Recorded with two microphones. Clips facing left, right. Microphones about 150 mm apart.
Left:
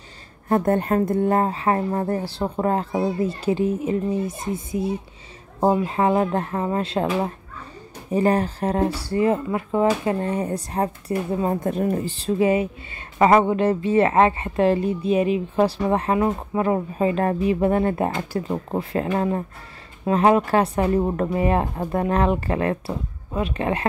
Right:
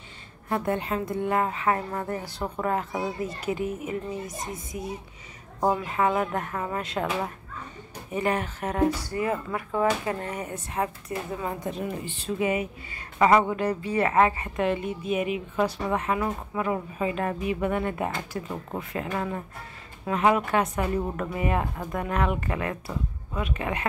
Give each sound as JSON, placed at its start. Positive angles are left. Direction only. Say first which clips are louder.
{"t": 0.5, "sound": "a woman's voice", "louder": "left 7 dB", "side_deg": 45}
{"t": 11.6, "sound": "speech", "louder": "left 9 dB", "side_deg": 50}